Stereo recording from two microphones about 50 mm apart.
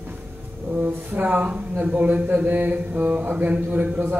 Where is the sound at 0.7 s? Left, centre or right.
Right.